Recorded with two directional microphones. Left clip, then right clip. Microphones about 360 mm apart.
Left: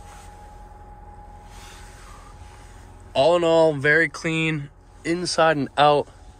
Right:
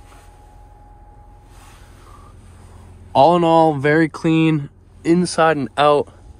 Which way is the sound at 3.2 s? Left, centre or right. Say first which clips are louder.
Right 5 dB; centre.